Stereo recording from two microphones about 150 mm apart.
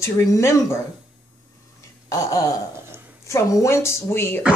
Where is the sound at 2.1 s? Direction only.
25° left (ahead or behind).